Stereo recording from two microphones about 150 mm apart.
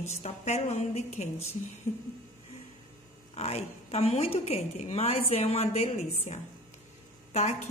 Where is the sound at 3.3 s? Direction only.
45° left (ahead or behind).